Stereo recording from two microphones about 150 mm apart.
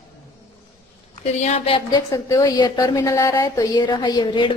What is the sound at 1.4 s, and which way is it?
Speech, 45° left (ahead or behind).